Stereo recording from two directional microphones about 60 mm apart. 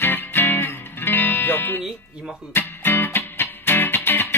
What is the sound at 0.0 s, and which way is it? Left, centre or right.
Music, left.